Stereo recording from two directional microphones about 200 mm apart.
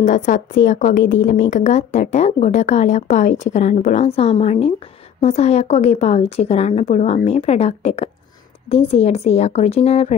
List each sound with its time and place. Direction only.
0.0 s a woman's voice: 40° left (ahead or behind)